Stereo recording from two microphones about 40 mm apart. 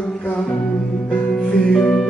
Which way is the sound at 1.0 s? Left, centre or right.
Left.